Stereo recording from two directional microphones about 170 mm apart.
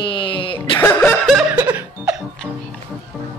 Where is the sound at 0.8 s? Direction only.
10° left (ahead or behind).